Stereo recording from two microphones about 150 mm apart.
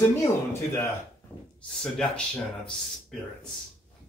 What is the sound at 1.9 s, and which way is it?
Speech, 5° left (ahead or behind).